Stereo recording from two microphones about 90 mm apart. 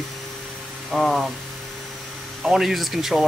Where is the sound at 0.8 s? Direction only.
Centre (ahead or behind).